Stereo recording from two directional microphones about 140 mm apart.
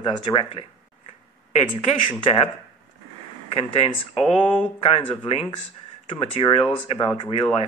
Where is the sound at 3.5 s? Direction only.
45° left (ahead or behind).